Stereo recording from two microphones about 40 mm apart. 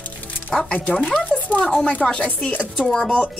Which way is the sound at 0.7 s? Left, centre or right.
Left.